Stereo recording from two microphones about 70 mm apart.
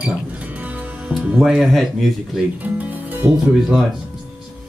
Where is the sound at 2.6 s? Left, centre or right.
Right.